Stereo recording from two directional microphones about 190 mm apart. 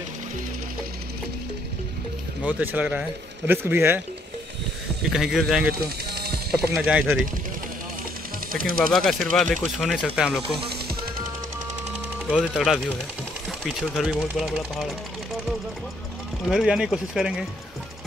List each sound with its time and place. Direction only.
2.4 s speech: 10° right (ahead or behind)
5.1 s speech: centre (ahead or behind)
6.0 s music: 55° right (ahead or behind)
6.7 s speech: 5° right (ahead or behind)
8.5 s speech: 50° right (ahead or behind)
8.9 s speech: centre (ahead or behind)
12.3 s speech: centre (ahead or behind)
16.4 s speech: centre (ahead or behind)